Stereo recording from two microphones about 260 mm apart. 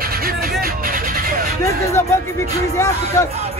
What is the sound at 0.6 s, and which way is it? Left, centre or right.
Vehicle, right.